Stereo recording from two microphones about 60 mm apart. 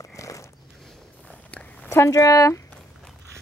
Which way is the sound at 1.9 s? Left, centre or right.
Left.